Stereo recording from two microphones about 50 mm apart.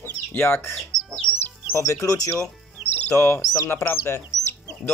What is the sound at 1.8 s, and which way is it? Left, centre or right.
Speech, left.